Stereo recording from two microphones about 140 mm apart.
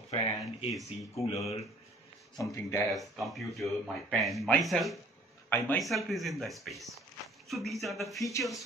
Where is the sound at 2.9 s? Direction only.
Centre (ahead or behind).